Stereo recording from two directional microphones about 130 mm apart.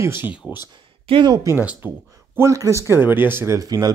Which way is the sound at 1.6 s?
10° right (ahead or behind).